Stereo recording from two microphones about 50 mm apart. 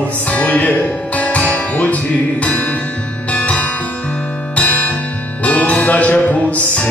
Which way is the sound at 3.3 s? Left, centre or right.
Left.